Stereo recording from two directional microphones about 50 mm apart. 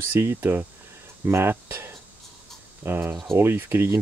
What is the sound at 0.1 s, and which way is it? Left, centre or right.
Speech, right.